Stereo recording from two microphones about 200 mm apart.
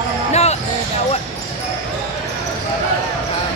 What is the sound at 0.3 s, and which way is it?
Basketball bounce, 35° left (ahead or behind).